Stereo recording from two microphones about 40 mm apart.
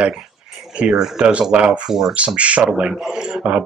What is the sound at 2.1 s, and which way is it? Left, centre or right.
Speech, right.